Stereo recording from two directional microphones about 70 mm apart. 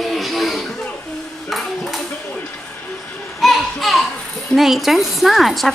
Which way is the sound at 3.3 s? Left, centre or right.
Centre.